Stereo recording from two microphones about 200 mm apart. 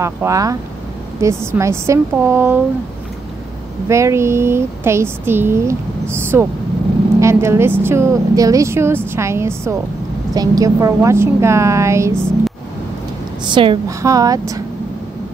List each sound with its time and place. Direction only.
0.0 s speech: 15° right (ahead or behind)
3.9 s speech: 15° right (ahead or behind)
13.5 s speech: 25° right (ahead or behind)